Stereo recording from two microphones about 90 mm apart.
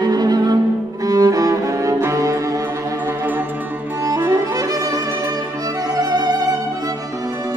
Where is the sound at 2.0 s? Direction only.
35° right (ahead or behind).